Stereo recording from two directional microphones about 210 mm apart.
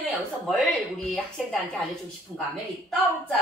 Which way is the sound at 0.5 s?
Centre (ahead or behind).